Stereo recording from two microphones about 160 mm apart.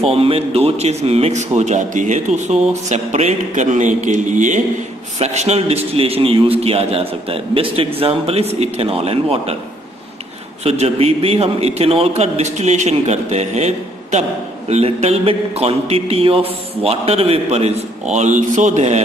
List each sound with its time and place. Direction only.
0.0 s a man's voice: 35° right (ahead or behind)
10.6 s a man's voice: 40° right (ahead or behind)